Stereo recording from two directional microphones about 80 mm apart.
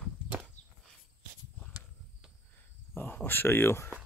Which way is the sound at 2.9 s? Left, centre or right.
Left.